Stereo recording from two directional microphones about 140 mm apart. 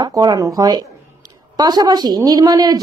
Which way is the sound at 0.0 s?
30° right (ahead or behind).